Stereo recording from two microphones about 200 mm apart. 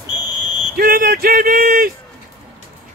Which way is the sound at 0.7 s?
45° right (ahead or behind).